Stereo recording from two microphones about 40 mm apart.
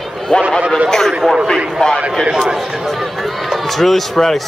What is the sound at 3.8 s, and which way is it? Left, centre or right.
Speech, centre.